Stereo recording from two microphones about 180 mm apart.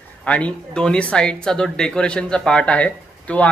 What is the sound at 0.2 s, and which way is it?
Speech, 5° left (ahead or behind).